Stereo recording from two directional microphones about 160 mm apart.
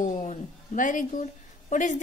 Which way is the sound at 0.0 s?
50° left (ahead or behind).